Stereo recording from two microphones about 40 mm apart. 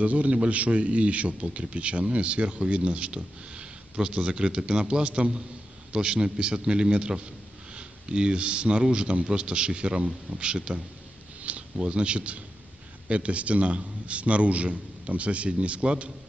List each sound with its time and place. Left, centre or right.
0.0 s a man's voice: right